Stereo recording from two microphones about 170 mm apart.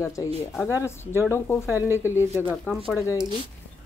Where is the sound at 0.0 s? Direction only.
20° left (ahead or behind).